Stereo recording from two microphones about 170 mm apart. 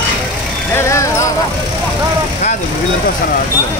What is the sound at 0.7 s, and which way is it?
Music, 15° left (ahead or behind).